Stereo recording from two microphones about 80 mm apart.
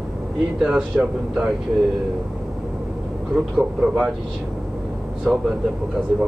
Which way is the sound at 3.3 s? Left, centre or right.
Centre.